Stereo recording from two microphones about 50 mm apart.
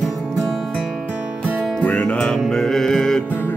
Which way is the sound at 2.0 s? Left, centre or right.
Centre.